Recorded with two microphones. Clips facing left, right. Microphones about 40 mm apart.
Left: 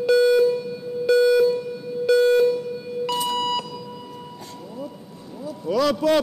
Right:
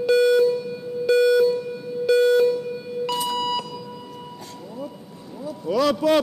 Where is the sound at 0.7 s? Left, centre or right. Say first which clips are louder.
Left 1 dB; centre.